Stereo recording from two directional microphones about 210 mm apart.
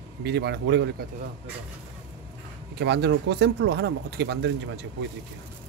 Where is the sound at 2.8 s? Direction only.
55° right (ahead or behind).